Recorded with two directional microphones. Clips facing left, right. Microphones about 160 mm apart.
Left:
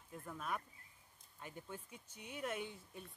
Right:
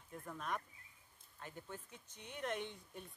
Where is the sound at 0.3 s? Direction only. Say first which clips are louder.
Even; centre (ahead or behind).